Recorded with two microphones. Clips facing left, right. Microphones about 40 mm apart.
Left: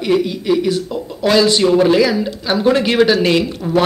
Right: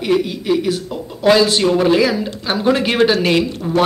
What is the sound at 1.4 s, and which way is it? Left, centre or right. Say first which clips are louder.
Speech: left 1 dB; right.